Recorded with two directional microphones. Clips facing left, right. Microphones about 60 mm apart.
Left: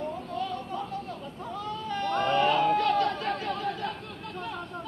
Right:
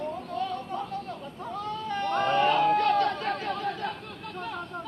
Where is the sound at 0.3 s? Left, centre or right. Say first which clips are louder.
Right 1 dB; right.